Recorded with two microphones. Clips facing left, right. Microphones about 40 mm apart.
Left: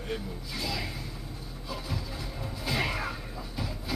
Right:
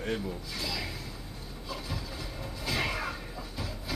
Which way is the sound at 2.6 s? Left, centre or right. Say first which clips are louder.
Left 1 dB; centre.